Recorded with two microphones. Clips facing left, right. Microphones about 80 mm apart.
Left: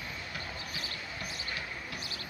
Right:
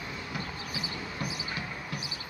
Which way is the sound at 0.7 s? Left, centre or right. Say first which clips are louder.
Right 4 dB; centre.